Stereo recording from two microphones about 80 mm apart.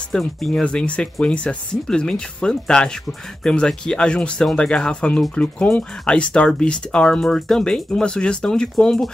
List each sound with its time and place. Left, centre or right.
0.1 s speech: centre